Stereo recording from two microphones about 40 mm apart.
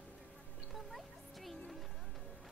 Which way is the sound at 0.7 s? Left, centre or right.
Centre.